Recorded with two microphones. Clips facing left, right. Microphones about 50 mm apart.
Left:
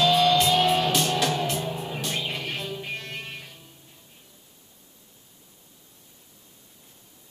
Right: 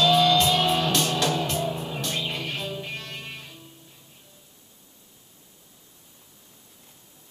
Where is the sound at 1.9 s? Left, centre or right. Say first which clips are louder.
Even; centre.